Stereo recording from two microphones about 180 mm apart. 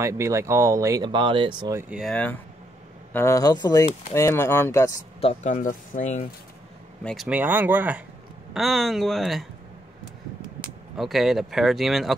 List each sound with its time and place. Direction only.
0.0 s speech: 15° right (ahead or behind)
1.8 s speech: 5° right (ahead or behind); by 4.9 s 15° left (ahead or behind)
5.2 s speech: 40° left (ahead or behind)
7.0 s speech: 5° left (ahead or behind)
7.2 s speech: 10° right (ahead or behind)
11.0 s speech: centre (ahead or behind)